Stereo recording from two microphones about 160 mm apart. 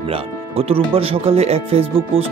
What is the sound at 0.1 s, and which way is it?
Speech, 35° right (ahead or behind).